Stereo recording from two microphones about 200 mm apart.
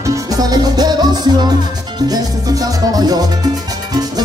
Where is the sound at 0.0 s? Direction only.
15° right (ahead or behind).